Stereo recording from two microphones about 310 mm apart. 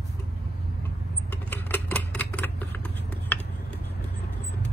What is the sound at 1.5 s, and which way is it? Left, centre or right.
Typewriter, centre.